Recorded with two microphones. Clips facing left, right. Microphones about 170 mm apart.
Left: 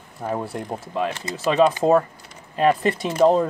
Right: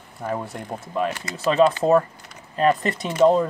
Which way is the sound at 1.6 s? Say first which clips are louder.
Left 1 dB; 15° left (ahead or behind).